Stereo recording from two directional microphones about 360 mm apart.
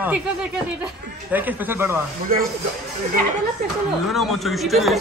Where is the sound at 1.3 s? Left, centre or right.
Centre.